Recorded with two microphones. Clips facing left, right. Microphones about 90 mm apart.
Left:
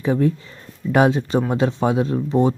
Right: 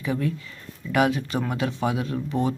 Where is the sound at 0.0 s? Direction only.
30° left (ahead or behind).